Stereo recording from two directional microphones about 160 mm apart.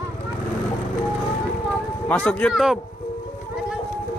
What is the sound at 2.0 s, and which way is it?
Speech, 10° left (ahead or behind).